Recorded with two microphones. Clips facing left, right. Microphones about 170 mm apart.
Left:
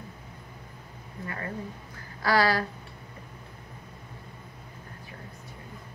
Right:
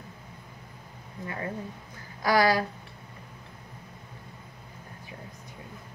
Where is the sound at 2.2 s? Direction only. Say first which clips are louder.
Right 1 dB; 15° right (ahead or behind).